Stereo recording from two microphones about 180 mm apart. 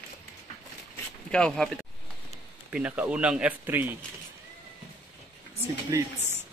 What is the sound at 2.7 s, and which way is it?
Speech, 10° right (ahead or behind).